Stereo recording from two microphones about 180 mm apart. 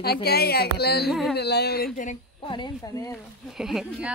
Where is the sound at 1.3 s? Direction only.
65° left (ahead or behind).